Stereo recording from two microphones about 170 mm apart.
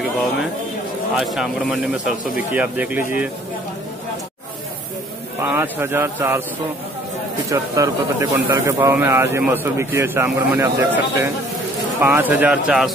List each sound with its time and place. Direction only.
1.1 s speech: centre (ahead or behind)
5.4 s speech: 15° right (ahead or behind)
7.4 s speech: 20° right (ahead or behind); by 12.9 s 5° right (ahead or behind)